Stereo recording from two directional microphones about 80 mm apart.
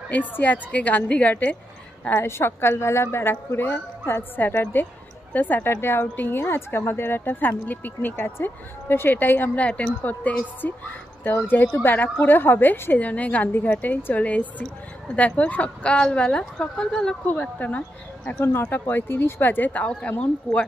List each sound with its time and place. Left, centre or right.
0.1 s a woman's voice: left
17.3 s speech: left
18.4 s speech: left